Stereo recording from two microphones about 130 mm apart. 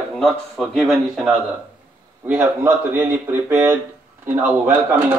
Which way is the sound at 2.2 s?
15° right (ahead or behind).